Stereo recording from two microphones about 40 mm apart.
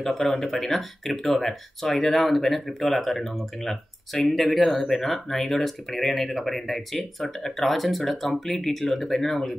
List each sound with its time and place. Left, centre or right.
0.0 s speech: centre